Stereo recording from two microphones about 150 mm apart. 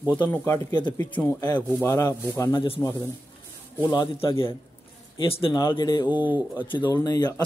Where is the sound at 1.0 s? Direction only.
10° left (ahead or behind).